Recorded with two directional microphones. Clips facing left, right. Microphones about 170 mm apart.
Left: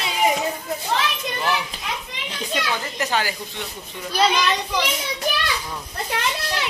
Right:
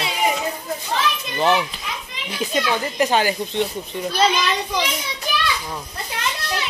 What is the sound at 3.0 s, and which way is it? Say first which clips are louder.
A woman's voice: right 7 dB; 20° right (ahead or behind).